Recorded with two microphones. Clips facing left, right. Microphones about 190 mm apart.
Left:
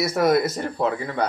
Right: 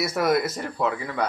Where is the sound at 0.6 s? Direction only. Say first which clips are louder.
Left 2 dB; 30° left (ahead or behind).